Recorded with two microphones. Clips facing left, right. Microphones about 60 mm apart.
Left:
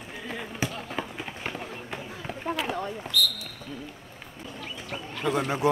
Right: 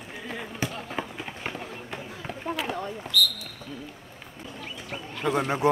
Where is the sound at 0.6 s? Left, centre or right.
Centre.